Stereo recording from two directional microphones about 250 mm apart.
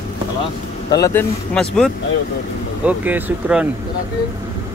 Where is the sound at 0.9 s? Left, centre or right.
Centre.